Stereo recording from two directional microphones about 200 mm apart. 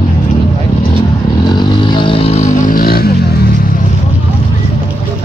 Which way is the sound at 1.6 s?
25° left (ahead or behind).